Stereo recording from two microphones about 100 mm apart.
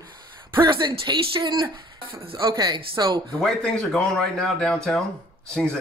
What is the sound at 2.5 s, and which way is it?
Speech, 45° right (ahead or behind).